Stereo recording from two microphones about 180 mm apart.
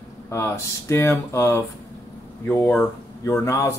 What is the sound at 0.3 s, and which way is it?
Speech, 15° left (ahead or behind).